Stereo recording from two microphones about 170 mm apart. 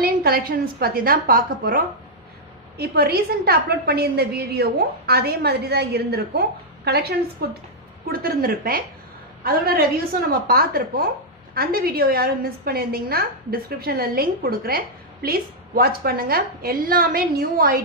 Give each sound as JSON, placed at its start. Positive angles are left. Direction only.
{"t": 0.0, "sound": "a woman's voice", "side_deg": -65}